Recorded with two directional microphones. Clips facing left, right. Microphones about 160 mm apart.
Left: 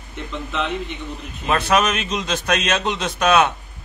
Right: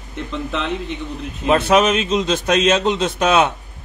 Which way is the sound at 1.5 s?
20° right (ahead or behind).